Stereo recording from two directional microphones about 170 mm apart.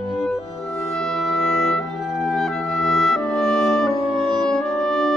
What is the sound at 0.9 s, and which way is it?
Music, 5° left (ahead or behind).